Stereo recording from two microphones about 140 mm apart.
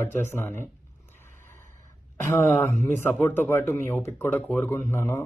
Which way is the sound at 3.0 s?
15° left (ahead or behind).